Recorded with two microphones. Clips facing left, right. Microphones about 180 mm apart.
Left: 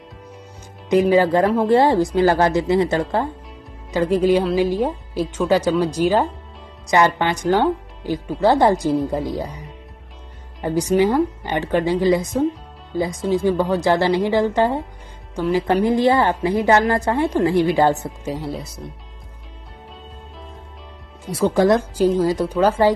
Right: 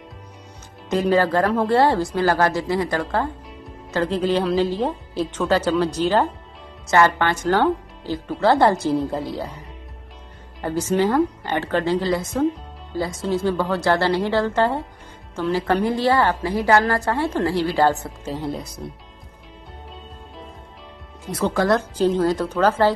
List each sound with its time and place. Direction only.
0.8 s a woman's voice: 15° left (ahead or behind)
10.6 s a woman's voice: 15° left (ahead or behind)
21.3 s a woman's voice: 10° left (ahead or behind)